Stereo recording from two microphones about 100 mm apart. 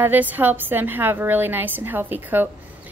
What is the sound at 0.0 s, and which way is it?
A woman's voice, 15° right (ahead or behind).